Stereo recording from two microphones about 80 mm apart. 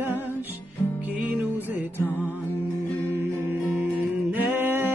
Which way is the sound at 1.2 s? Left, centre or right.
Right.